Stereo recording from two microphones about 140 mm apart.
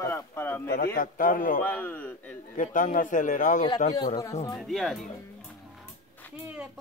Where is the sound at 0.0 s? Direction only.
20° left (ahead or behind).